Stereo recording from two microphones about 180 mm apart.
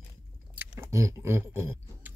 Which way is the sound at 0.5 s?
10° right (ahead or behind).